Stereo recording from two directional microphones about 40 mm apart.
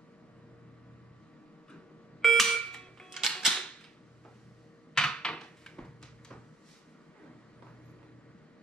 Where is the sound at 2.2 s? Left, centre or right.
Centre.